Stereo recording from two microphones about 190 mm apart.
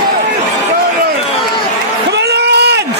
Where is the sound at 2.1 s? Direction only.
60° right (ahead or behind).